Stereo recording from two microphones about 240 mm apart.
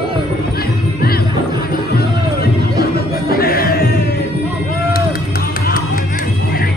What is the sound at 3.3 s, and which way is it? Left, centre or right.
Music, left.